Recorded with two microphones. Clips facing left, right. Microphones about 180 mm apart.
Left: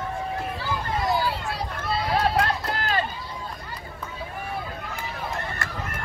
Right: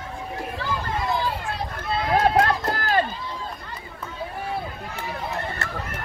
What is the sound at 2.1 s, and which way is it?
Run, 50° right (ahead or behind).